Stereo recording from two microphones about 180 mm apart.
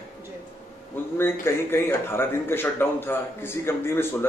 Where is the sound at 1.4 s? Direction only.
15° left (ahead or behind).